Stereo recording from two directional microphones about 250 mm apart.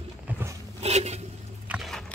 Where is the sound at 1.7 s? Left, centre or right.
Centre.